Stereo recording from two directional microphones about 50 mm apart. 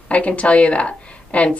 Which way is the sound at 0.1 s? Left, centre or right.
Left.